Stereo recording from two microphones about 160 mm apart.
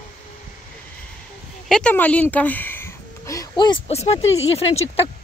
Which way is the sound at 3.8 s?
40° left (ahead or behind).